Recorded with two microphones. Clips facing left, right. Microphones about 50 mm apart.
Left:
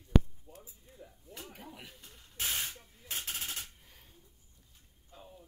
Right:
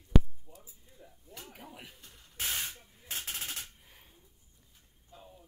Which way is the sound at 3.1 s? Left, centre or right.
Centre.